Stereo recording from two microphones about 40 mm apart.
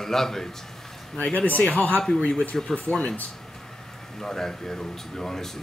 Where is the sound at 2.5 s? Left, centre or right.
Centre.